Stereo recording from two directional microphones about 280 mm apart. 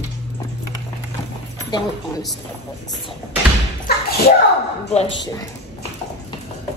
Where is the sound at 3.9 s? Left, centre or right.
Left.